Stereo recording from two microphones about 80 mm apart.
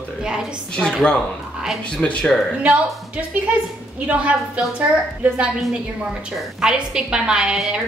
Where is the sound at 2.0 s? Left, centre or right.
Centre.